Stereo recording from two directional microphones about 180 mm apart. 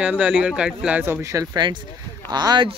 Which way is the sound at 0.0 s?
5° right (ahead or behind).